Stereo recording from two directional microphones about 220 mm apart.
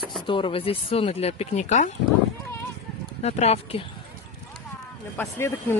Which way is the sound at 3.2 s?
30° left (ahead or behind).